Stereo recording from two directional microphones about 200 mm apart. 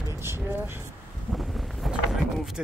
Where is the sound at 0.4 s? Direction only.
10° right (ahead or behind).